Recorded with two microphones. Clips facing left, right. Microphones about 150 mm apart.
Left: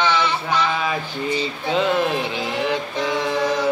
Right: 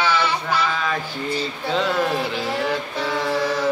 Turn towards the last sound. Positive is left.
turn(degrees=15)  # may be behind; listen again after turning